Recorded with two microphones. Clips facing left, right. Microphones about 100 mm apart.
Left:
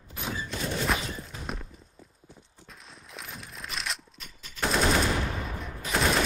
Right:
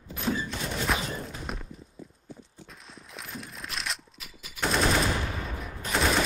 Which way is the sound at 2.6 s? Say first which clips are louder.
Right 2 dB; centre (ahead or behind).